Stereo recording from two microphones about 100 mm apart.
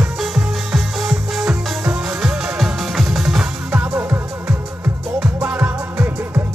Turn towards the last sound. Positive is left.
turn(degrees=-15)  # may be behind; listen again after turning